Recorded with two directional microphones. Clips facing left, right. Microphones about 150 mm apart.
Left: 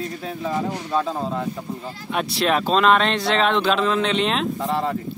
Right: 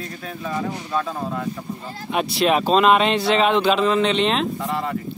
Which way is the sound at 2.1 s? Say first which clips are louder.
Right 2 dB; 5° right (ahead or behind).